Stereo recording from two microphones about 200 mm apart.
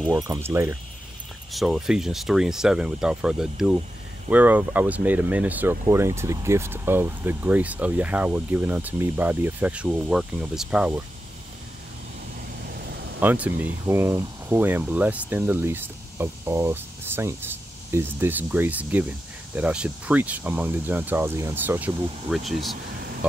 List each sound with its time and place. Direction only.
0.0 s speech: 15° right (ahead or behind)
1.5 s speech: centre (ahead or behind)
12.6 s vehicle: 50° right (ahead or behind)
13.2 s speech: 10° right (ahead or behind)